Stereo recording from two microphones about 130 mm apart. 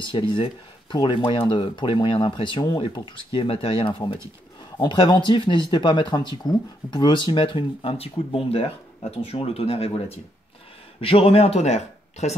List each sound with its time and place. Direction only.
0.0 s speech: 40° left (ahead or behind); by 12.4 s 60° left (ahead or behind)